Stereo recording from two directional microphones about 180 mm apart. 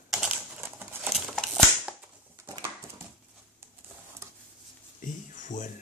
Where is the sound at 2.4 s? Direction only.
25° right (ahead or behind).